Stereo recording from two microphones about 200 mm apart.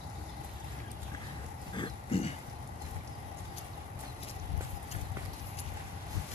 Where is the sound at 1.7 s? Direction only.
25° left (ahead or behind).